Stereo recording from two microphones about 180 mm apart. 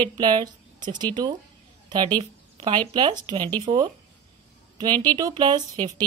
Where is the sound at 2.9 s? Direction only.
25° right (ahead or behind).